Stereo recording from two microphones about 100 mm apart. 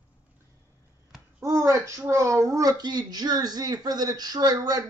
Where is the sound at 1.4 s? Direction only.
30° right (ahead or behind).